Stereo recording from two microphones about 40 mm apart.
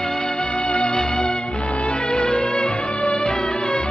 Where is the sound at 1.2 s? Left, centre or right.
Left.